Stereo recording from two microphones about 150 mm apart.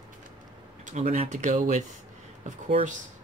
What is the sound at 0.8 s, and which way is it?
Speech, 55° right (ahead or behind).